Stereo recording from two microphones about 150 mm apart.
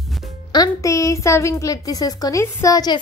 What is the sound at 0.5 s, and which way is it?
A woman's voice, 25° left (ahead or behind).